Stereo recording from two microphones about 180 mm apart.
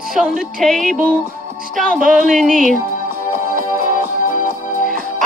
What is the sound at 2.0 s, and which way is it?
Speech, 45° right (ahead or behind).